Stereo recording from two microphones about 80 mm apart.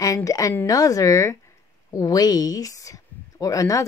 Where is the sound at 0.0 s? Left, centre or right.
Left.